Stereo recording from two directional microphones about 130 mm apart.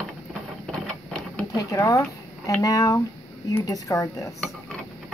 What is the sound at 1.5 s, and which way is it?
Speech, 25° left (ahead or behind).